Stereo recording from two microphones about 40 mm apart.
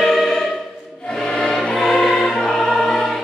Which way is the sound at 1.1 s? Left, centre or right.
Centre.